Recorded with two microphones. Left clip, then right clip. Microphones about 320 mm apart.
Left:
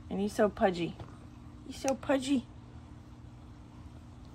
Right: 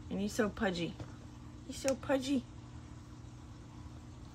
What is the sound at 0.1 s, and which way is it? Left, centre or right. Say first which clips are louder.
A woman's voice: left 6 dB; centre.